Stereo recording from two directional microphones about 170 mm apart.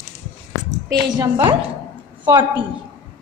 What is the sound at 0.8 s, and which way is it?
Speech, 20° right (ahead or behind).